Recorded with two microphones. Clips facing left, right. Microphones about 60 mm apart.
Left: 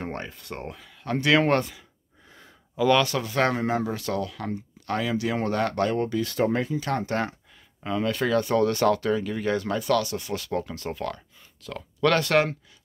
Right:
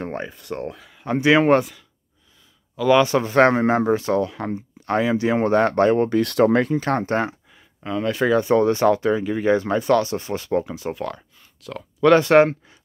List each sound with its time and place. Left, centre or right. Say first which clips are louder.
0.0 s speech: right 4 dB; centre
1.0 s speech: right 5 dB; centre
2.9 s speech: right 7 dB; right
6.1 s speech: right 7 dB; right
6.7 s speech: right 6 dB; right
7.8 s speech: right 4 dB; centre; by 10.7 s right
10.7 s speech: right 4 dB; centre
12.0 s speech: right 8 dB; centre